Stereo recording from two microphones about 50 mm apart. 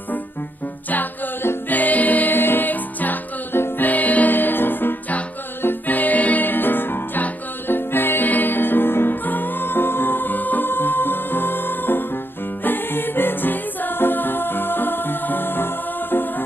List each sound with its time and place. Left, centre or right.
0.8 s music: left
3.5 s music: left
3.8 s music: left